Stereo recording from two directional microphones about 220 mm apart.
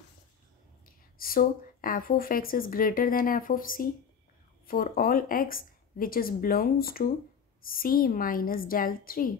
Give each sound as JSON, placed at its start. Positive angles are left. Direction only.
{"t": 0.8, "sound": "speech", "side_deg": 40}